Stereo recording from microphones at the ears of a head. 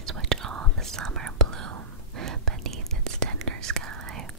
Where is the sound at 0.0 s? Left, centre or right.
Right.